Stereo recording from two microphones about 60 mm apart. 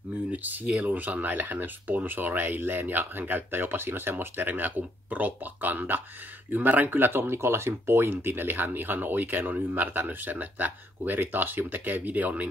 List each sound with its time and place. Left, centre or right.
0.3 s speech: right